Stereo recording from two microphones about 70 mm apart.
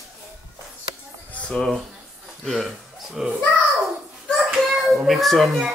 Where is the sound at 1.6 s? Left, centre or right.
Centre.